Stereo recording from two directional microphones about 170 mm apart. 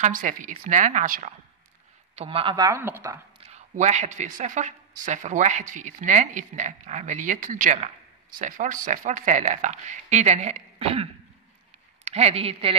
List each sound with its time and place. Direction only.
0.0 s speech: 50° right (ahead or behind)
2.1 s speech: 35° right (ahead or behind); by 3.2 s 15° right (ahead or behind)
3.4 s speech: 45° right (ahead or behind)